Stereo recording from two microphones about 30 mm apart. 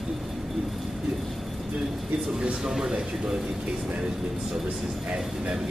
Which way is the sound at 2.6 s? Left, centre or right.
Centre.